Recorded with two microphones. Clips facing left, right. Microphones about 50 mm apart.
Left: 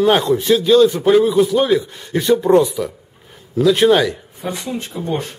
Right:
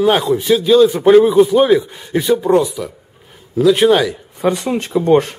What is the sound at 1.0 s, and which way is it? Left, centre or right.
A man's voice, centre.